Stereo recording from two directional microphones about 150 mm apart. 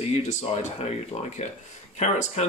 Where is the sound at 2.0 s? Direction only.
45° left (ahead or behind).